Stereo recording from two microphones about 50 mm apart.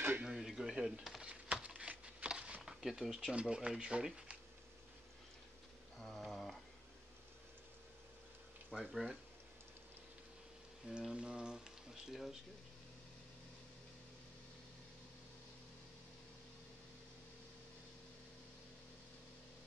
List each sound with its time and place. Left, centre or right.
0.2 s dishes: centre
1.2 s a sound: right
2.6 s speech: centre
5.9 s a sound: centre
8.7 s speech: centre
10.9 s speech: centre